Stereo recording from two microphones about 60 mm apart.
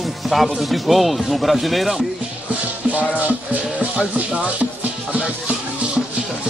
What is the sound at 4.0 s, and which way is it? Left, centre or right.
Speech, centre.